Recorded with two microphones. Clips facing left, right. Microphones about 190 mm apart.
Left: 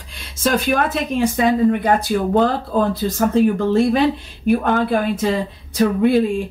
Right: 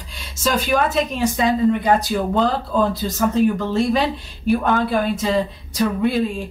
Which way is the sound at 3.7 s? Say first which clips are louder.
Left 4 dB; 55° left (ahead or behind).